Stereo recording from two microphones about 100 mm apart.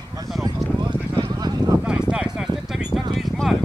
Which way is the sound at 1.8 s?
10° right (ahead or behind).